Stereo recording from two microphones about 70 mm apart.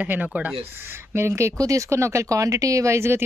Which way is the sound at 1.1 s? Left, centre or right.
Right.